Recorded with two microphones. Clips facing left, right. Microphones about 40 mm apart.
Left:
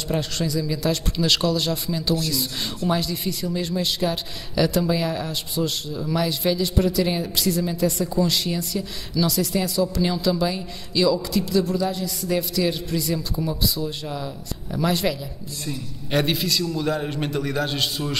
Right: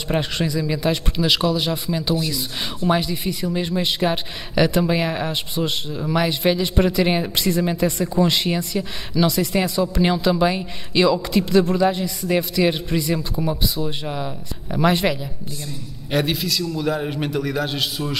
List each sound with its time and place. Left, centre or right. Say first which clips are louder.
0.1 s speech: right 3 dB; right
1.2 s speech: right 2 dB; centre; by 15.1 s right
16.1 s a man's voice: right 1 dB; centre